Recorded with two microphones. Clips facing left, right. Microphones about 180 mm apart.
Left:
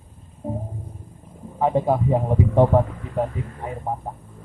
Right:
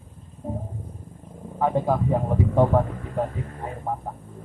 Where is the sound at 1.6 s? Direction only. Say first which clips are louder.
Left 2 dB; 20° left (ahead or behind).